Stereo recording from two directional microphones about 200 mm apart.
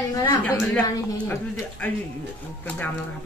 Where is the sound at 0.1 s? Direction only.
15° left (ahead or behind).